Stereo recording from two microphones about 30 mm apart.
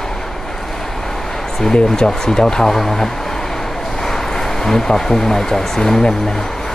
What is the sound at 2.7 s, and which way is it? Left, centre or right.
Speech, centre.